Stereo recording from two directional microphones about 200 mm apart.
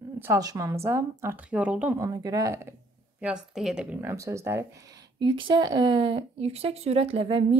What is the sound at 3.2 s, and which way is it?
Speech, 5° right (ahead or behind).